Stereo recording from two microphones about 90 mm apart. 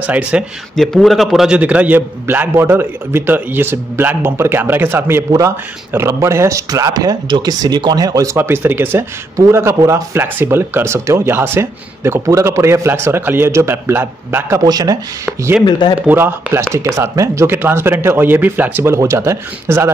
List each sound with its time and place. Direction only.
0.0 s speech: 15° right (ahead or behind)
0.7 s a man's voice: centre (ahead or behind)
1.6 s speech: 15° right (ahead or behind); by 6.6 s 35° right (ahead or behind)
6.7 s speech: 45° right (ahead or behind)
8.4 s speech: 25° right (ahead or behind)
14.6 s speech: 45° right (ahead or behind)
16.1 s speech: 25° right (ahead or behind)